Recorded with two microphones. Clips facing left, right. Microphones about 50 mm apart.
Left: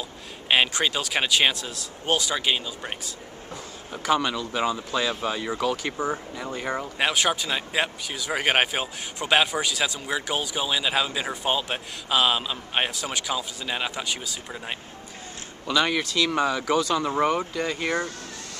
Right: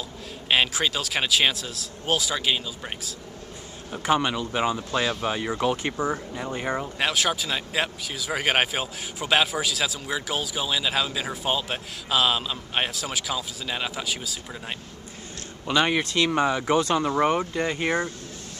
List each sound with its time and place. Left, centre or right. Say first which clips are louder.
0.5 s speech: left 1 dB; centre
4.0 s speech: right 1 dB; right
5.6 s speech: right 2 dB; right
5.9 s speech: right 1 dB; centre
15.6 s speech: right 1 dB; right
16.0 s speech: right 1 dB; right
16.3 s speech: right 1 dB; right